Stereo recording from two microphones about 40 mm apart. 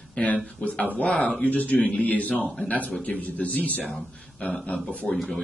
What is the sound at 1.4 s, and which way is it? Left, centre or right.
A man's voice, left.